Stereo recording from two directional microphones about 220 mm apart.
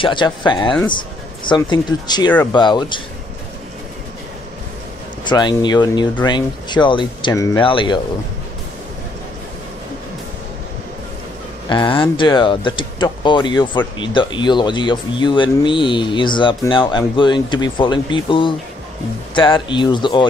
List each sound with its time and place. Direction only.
0.0 s speech: 20° left (ahead or behind)
5.2 s speech: 20° left (ahead or behind)
11.7 s speech: 20° left (ahead or behind)